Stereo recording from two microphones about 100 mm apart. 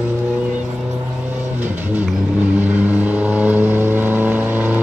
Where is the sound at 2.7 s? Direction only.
15° right (ahead or behind).